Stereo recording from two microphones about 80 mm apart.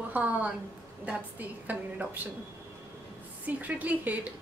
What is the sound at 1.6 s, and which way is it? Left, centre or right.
Speech, right.